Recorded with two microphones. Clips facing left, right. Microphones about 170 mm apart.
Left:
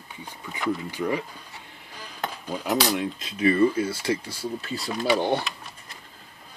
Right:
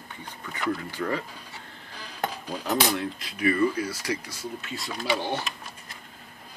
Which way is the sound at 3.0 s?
20° left (ahead or behind).